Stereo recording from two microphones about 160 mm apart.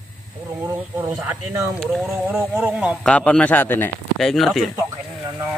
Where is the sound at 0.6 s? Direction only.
15° right (ahead or behind).